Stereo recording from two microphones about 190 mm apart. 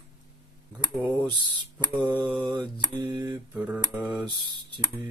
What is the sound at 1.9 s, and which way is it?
Speech, 25° right (ahead or behind).